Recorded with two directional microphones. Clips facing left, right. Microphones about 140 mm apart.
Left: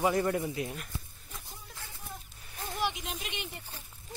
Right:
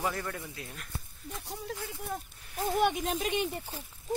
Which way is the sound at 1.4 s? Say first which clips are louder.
Right 11 dB; 75° right (ahead or behind).